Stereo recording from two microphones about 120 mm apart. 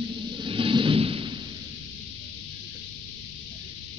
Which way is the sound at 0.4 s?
45° right (ahead or behind).